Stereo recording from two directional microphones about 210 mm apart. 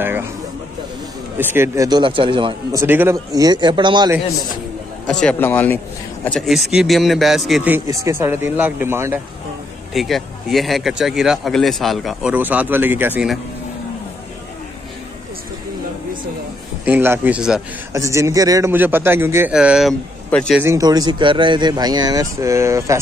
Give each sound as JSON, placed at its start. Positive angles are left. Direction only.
{"t": 0.0, "sound": "a sound", "side_deg": -10}
{"t": 1.4, "sound": "speech", "side_deg": -10}
{"t": 2.8, "sound": "speech", "side_deg": -10}
{"t": 5.2, "sound": "a man's voice", "side_deg": 10}
{"t": 9.9, "sound": "speech", "side_deg": 0}
{"t": 16.8, "sound": "a man's voice", "side_deg": -10}
{"t": 20.5, "sound": "speech", "side_deg": -15}